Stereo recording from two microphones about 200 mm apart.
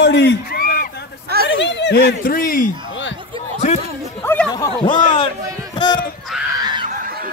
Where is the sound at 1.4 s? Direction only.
65° left (ahead or behind); by 2.6 s 45° left (ahead or behind).